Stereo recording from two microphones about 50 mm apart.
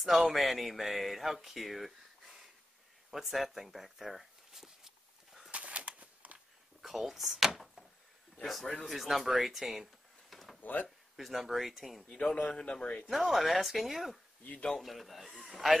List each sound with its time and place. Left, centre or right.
0.0 s speech: centre
3.1 s a sound: centre
5.5 s a sound: right
6.8 s speech: centre
10.3 s a sound: centre
10.6 s speech: left
11.1 s speech: centre
12.1 s speech: left
13.1 s speech: centre